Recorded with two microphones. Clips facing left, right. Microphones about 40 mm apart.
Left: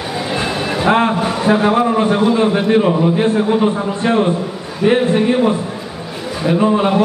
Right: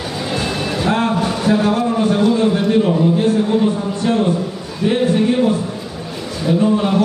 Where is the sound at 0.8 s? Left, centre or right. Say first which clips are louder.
Left 4 dB; left.